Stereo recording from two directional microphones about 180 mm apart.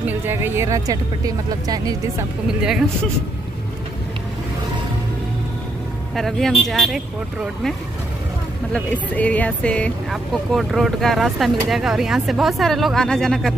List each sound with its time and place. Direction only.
0.0 s speech: 10° right (ahead or behind)
2.4 s speech: 5° right (ahead or behind)
6.1 s speech: centre (ahead or behind)
8.7 s speech: 10° left (ahead or behind)